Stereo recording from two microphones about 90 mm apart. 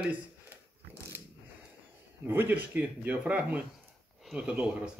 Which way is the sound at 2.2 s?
25° right (ahead or behind).